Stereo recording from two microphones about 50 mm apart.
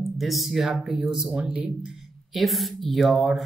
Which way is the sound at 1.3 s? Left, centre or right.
Right.